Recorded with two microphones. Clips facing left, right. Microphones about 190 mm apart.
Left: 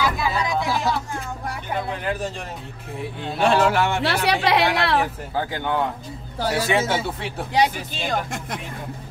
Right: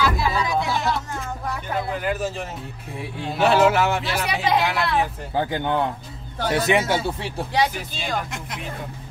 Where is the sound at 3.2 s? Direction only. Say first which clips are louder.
Right 1 dB; 5° right (ahead or behind).